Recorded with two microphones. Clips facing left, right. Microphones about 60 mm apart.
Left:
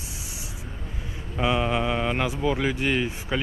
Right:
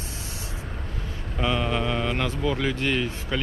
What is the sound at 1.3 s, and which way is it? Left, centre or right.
Speech, centre.